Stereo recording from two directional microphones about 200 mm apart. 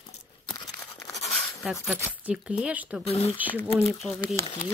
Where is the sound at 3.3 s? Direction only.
10° right (ahead or behind).